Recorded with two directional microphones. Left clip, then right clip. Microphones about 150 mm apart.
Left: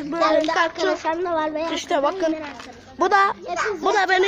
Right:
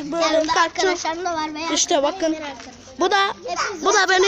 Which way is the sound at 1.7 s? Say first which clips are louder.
Right 7 dB; 40° right (ahead or behind).